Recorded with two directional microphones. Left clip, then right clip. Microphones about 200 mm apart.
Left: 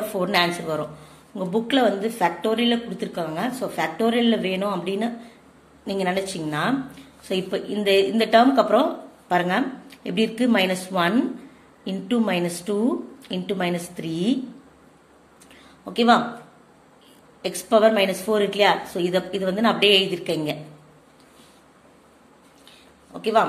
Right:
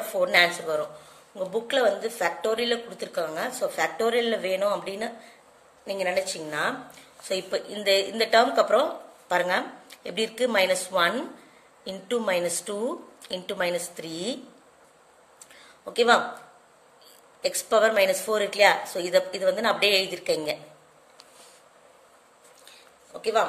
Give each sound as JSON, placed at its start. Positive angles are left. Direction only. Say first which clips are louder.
{"t": 0.2, "sound": "a woman's voice", "louder": "right 1 dB", "side_deg": -15}
{"t": 15.8, "sound": "speech", "louder": "left 2 dB", "side_deg": -25}
{"t": 17.4, "sound": "a woman's voice", "louder": "left 4 dB", "side_deg": -25}
{"t": 22.7, "sound": "a sound", "louder": "left 2 dB", "side_deg": -15}